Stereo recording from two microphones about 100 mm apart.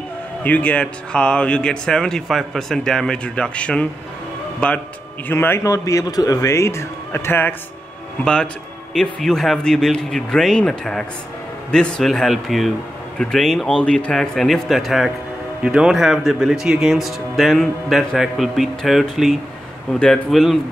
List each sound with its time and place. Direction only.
0.4 s speech: 15° left (ahead or behind)
5.7 s speech: 30° left (ahead or behind)
8.2 s speech: 10° left (ahead or behind)